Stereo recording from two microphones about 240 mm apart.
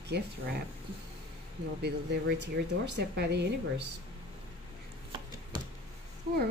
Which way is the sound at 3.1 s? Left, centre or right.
Right.